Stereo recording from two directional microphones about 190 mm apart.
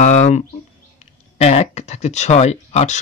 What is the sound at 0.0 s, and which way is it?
Speech, 40° left (ahead or behind).